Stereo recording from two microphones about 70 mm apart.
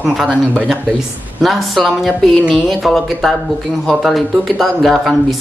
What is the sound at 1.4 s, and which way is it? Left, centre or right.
Speech, centre.